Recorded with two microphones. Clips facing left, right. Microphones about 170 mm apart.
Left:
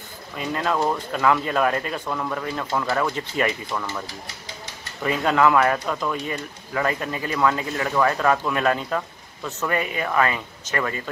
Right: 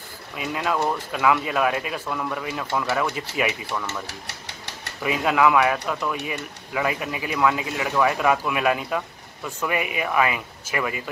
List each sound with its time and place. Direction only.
0.4 s speech: 5° right (ahead or behind)
4.1 s a sound: 70° right (ahead or behind)
5.0 s speech: 5° right (ahead or behind)